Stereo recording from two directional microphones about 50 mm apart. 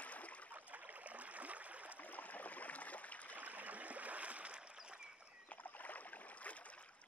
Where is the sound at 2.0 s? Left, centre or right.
Left.